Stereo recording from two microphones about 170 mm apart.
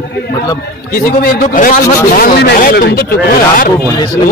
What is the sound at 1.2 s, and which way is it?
Speech, 55° left (ahead or behind).